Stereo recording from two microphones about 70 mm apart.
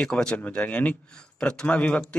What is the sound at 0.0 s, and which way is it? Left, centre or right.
Speech, centre.